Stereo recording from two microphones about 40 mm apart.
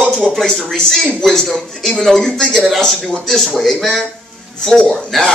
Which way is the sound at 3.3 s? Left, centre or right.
Centre.